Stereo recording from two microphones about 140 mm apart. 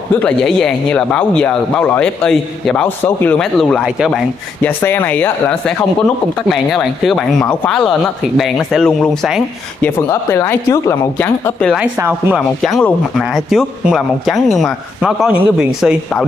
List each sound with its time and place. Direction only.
0.2 s speech: 5° left (ahead or behind)
4.6 s speech: 15° left (ahead or behind)
6.5 s speech: centre (ahead or behind)
9.8 s speech: 15° left (ahead or behind)
11.8 s speech: 15° right (ahead or behind)
12.6 s speech: centre (ahead or behind)